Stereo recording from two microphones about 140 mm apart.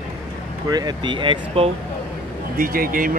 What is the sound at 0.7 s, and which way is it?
Speech, 30° right (ahead or behind).